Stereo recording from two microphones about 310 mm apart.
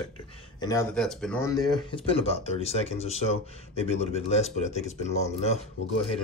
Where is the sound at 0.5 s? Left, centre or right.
Centre.